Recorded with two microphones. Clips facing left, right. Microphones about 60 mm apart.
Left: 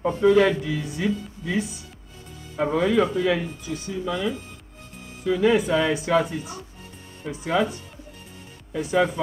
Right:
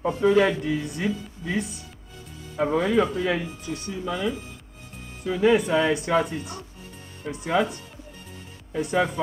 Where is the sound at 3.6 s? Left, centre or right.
Right.